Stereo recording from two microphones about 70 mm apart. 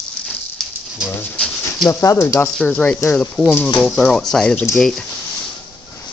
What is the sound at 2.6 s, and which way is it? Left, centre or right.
Speech, centre.